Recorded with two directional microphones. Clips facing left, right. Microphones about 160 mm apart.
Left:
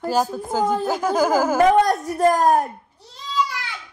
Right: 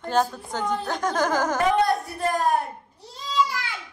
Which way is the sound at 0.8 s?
5° left (ahead or behind).